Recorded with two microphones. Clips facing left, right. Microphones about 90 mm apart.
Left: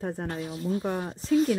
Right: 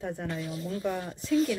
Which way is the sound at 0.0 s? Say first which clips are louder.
Left 2 dB; 40° left (ahead or behind).